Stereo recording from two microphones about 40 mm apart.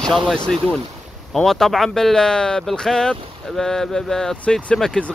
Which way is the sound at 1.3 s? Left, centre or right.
Centre.